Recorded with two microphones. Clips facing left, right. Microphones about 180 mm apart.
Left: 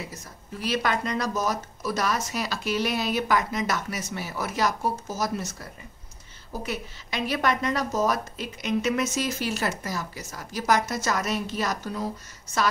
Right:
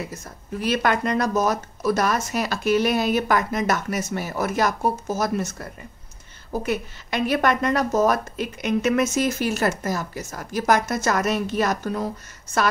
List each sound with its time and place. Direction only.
0.0 s speech: 55° right (ahead or behind)